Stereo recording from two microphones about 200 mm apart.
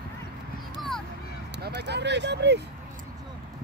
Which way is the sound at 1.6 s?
55° right (ahead or behind).